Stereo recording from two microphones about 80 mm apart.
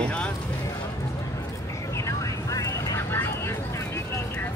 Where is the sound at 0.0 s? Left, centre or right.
Centre.